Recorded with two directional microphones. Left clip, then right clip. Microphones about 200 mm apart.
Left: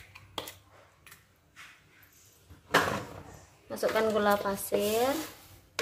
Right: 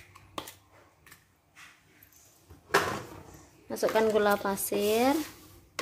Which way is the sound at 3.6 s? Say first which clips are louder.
Right 2 dB; 50° right (ahead or behind).